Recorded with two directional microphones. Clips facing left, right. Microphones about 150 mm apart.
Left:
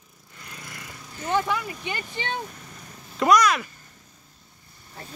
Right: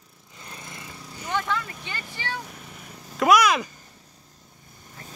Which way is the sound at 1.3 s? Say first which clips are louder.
Left 3 dB; 15° left (ahead or behind).